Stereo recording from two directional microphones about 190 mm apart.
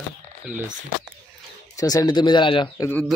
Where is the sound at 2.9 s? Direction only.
5° left (ahead or behind).